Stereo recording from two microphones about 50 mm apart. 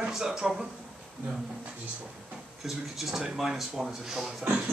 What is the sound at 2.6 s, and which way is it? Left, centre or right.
Speech, centre.